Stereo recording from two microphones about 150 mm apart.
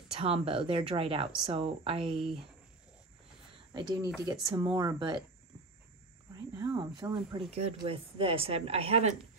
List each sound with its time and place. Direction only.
0.1 s a woman's voice: 40° right (ahead or behind)
3.7 s speech: 30° right (ahead or behind)
6.3 s a woman's voice: 25° right (ahead or behind); by 9.1 s 40° right (ahead or behind)